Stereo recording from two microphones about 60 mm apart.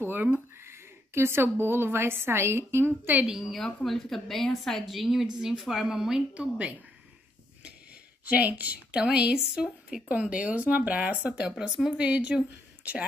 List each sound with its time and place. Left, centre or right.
0.0 s speech: right
3.3 s a woman's voice: centre
6.3 s speech: right
7.6 s a sound: right
8.9 s a woman's voice: centre